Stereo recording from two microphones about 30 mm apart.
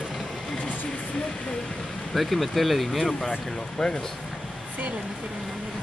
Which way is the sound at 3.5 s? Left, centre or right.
Centre.